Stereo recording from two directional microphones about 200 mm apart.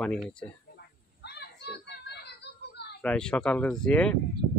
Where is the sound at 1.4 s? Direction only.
55° left (ahead or behind).